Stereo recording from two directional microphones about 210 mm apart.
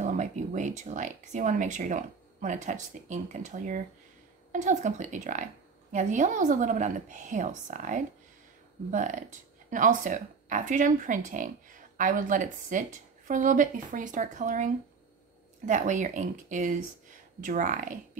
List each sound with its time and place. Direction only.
0.0 s speech: 35° right (ahead or behind)